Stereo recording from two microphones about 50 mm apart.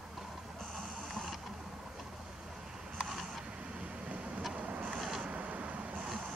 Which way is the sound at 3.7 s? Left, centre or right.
Right.